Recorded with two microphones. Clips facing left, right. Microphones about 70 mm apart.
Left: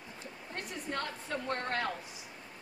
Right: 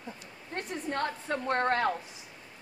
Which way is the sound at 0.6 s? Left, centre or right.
Right.